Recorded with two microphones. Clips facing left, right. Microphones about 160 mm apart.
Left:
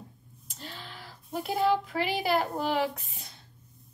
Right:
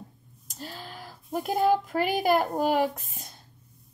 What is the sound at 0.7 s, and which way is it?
A woman's voice, 45° right (ahead or behind).